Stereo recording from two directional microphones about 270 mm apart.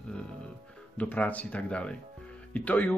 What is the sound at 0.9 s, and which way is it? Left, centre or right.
Speech, centre.